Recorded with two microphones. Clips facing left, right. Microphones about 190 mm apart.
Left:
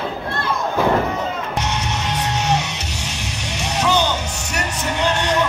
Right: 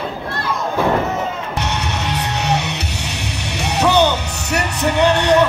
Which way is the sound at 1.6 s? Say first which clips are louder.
Right 1 dB; 60° right (ahead or behind).